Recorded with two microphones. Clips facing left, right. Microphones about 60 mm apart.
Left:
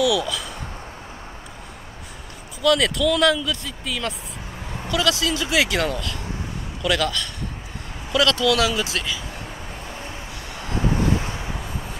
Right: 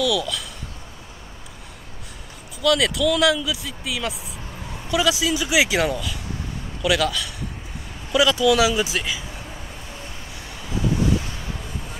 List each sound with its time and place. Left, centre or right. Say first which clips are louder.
0.0 s speech: left 2 dB; centre
2.6 s speech: even; centre
11.1 s vehicle: left 2 dB; left